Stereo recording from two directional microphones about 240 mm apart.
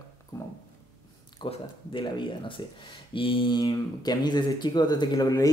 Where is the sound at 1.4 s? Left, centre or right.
Left.